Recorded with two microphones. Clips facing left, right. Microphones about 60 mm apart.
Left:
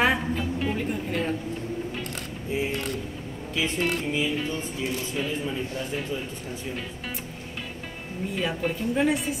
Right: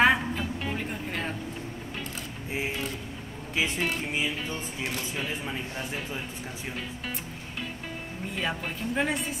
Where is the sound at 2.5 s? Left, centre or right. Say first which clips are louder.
Left 4 dB; centre.